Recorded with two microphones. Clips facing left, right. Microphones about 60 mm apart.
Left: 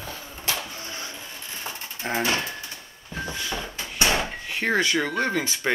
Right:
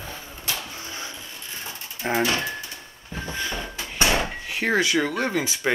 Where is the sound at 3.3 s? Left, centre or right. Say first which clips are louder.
Right 3 dB; right.